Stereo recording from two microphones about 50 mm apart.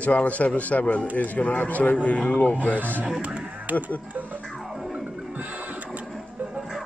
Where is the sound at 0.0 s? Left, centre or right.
Left.